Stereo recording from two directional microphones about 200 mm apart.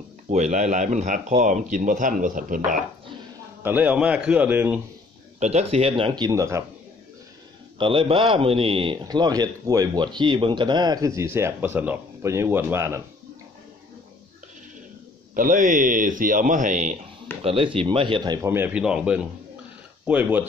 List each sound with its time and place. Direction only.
0.3 s speech: 35° right (ahead or behind)
3.6 s a man's voice: 5° right (ahead or behind)
5.4 s a man's voice: 30° right (ahead or behind); by 6.6 s 15° right (ahead or behind)
7.8 s a man's voice: 25° right (ahead or behind)
15.3 s a man's voice: 40° right (ahead or behind); by 20.4 s 10° right (ahead or behind)